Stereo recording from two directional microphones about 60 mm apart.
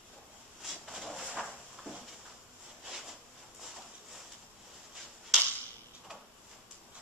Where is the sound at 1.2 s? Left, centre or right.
Centre.